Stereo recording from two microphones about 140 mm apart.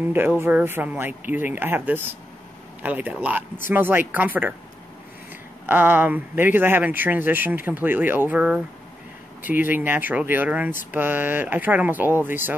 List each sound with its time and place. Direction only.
0.1 s speech: 15° right (ahead or behind)
5.7 s speech: 15° right (ahead or behind)